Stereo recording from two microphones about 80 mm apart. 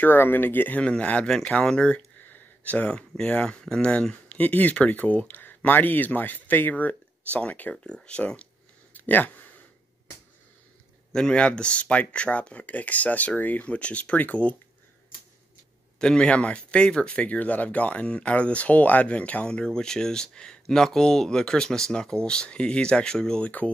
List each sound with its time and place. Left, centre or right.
0.0 s speech: left
8.9 s a sound: left
11.1 s speech: centre
16.0 s speech: centre